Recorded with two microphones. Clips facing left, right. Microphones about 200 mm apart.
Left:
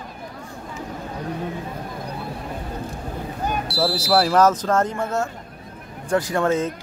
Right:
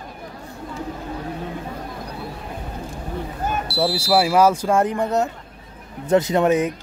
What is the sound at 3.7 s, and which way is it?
Smoke detector, centre (ahead or behind).